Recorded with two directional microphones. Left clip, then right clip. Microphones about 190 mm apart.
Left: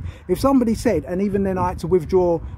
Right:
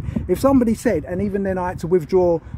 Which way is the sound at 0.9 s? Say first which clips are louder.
Left 1 dB; 10° left (ahead or behind).